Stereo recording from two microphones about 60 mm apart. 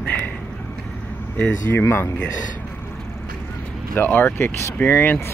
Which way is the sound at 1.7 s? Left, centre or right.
Left.